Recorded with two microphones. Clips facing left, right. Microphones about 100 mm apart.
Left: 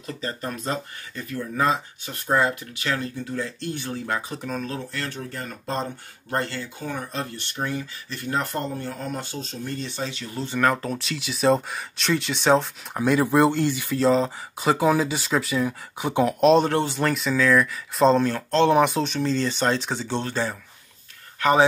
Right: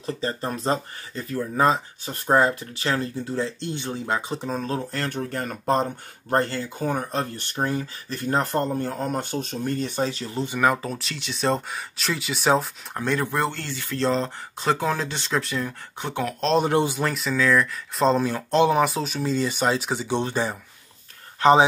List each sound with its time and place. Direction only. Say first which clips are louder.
0.0 s speech: right 3 dB; 30° right (ahead or behind)
10.3 s speech: left 1 dB; 10° right (ahead or behind)
13.0 s speech: left 6 dB; 10° left (ahead or behind)
14.0 s speech: left 4 dB; 5° left (ahead or behind)
16.2 s speech: left 7 dB; 20° left (ahead or behind)
16.5 s speech: even; 15° right (ahead or behind)
17.0 s speech: left 1 dB; centre (ahead or behind); by 21.6 s 25° right (ahead or behind)